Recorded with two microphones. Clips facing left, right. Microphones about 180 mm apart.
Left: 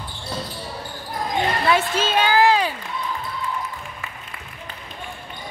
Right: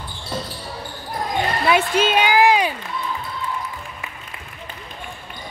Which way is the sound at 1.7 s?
15° right (ahead or behind).